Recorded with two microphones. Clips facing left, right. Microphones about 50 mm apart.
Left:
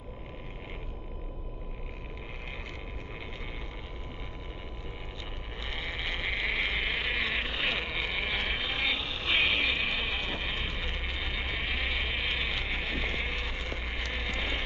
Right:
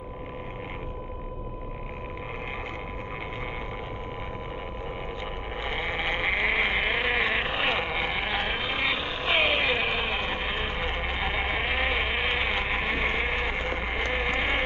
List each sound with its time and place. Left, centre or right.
5.6 s sheep: right